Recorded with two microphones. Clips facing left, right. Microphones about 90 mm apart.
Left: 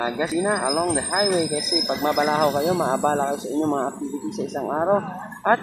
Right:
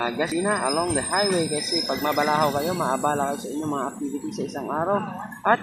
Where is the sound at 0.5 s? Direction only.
15° left (ahead or behind).